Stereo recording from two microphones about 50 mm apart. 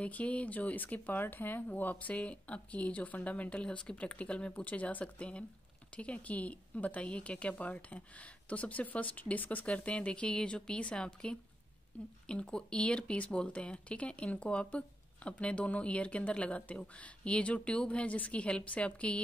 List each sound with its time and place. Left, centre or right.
0.0 s speech: left
9.7 s speech: left